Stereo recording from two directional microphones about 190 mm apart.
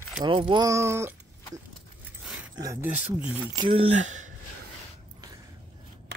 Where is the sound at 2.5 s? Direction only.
15° right (ahead or behind).